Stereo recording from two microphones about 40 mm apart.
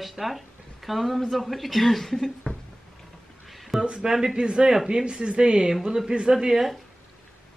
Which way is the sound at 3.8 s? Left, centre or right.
Right.